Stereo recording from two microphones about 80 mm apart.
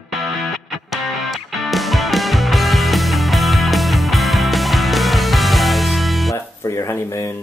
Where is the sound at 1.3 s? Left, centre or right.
Centre.